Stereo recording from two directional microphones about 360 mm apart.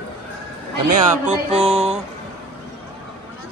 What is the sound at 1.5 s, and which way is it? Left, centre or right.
Speech, centre.